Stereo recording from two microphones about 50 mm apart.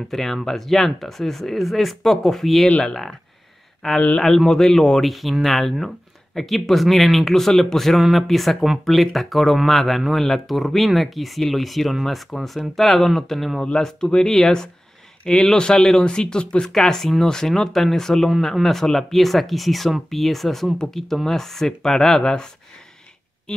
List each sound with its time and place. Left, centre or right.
0.1 s speech: centre